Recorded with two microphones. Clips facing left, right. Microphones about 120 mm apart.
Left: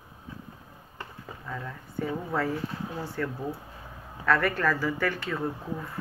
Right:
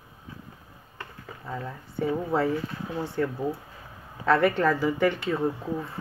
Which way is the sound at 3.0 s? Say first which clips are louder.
Right 6 dB; 25° right (ahead or behind).